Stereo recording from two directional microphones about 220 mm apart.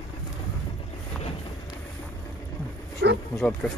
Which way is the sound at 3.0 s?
55° right (ahead or behind).